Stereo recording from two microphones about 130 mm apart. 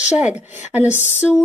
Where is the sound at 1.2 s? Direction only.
5° right (ahead or behind).